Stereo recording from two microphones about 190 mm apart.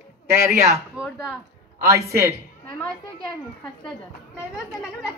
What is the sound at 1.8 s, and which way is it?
Music, 15° right (ahead or behind).